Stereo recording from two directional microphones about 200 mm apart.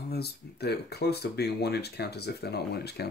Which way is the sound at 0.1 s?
55° left (ahead or behind).